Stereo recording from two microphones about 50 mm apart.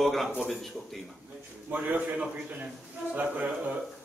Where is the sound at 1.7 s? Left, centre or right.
Right.